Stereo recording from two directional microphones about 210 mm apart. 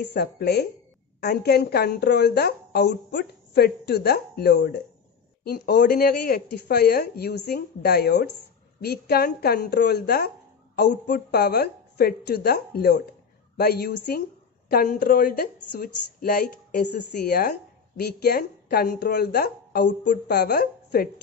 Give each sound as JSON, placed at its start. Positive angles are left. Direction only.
{"t": 0.1, "sound": "speech", "side_deg": 50}